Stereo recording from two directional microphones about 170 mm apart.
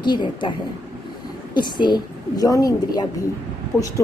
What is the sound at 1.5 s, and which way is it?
Speech, 25° left (ahead or behind).